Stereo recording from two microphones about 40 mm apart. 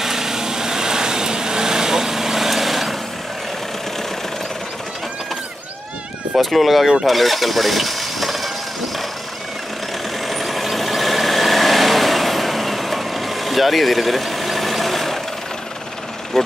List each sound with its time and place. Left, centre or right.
0.0 s vehicle: centre
6.3 s speech: centre
7.1 s vehicle: centre
10.2 s vehicle: centre
16.3 s vehicle: centre